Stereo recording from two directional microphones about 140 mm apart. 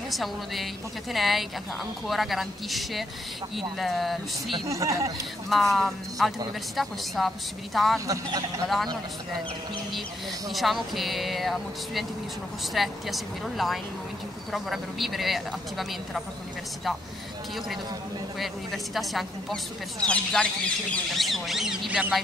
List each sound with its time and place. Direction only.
0.1 s speech: centre (ahead or behind)
4.6 s speech: 20° right (ahead or behind)
5.5 s speech: centre (ahead or behind)
8.1 s speech: 25° right (ahead or behind)
10.5 s speech: centre (ahead or behind)
18.4 s speech: centre (ahead or behind)